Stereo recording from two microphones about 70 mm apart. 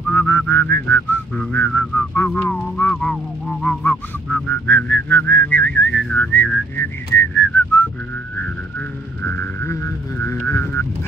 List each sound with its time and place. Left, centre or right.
0.1 s a sound: left
0.7 s whistling: left
1.3 s a sound: centre
1.6 s speech: left
2.3 s whistling: left
3.0 s honk: centre
4.3 s whistling: left
6.3 s whistling: left
9.2 s whistling: left
9.7 s speech: left